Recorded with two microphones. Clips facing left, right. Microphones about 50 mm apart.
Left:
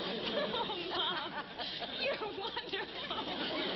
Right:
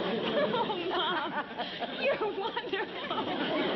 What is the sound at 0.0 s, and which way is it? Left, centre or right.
Chatter, right.